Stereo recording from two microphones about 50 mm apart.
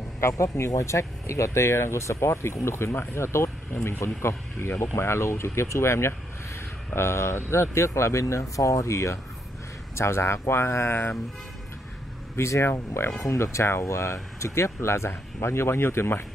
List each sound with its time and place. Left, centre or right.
0.2 s speech: left
9.9 s speech: left
12.4 s speech: left
13.2 s speech: left